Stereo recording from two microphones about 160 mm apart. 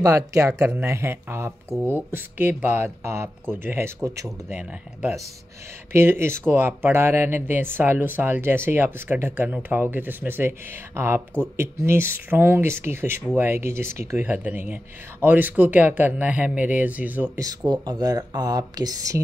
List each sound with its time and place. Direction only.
0.0 s speech: 20° right (ahead or behind)
17.5 s speech: 25° right (ahead or behind)